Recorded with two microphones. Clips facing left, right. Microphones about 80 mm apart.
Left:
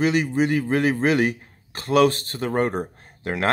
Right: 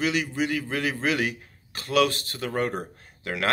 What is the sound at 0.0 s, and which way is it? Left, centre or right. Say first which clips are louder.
Speech: left 6 dB; left.